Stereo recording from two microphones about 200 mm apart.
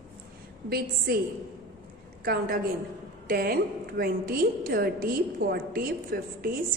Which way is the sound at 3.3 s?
50° right (ahead or behind).